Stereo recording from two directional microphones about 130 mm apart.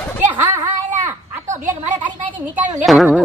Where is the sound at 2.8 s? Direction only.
Centre (ahead or behind).